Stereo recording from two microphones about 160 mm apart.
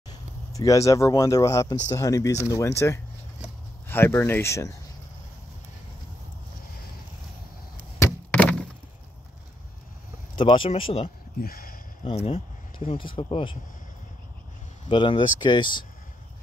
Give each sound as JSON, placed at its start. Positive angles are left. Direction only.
{"t": 0.1, "sound": "speech", "side_deg": 20}
{"t": 8.0, "sound": "a sound", "side_deg": 10}
{"t": 10.3, "sound": "speech", "side_deg": 30}
{"t": 11.4, "sound": "speech", "side_deg": 65}
{"t": 12.0, "sound": "speech", "side_deg": 35}
{"t": 14.9, "sound": "speech", "side_deg": 30}